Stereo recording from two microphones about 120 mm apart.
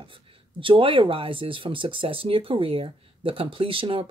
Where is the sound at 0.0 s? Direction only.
45° right (ahead or behind).